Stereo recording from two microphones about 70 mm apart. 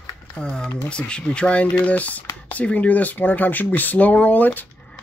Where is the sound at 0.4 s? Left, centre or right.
Centre.